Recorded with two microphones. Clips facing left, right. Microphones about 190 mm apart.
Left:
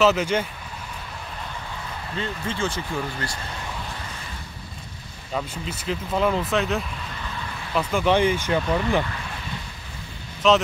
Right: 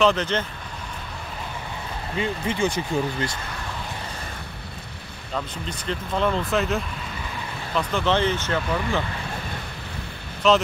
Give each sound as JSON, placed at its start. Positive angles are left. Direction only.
{"t": 0.0, "sound": "speech", "side_deg": 10}
{"t": 2.1, "sound": "speech", "side_deg": -15}
{"t": 5.3, "sound": "speech", "side_deg": 5}
{"t": 7.7, "sound": "speech", "side_deg": 10}
{"t": 10.4, "sound": "speech", "side_deg": 0}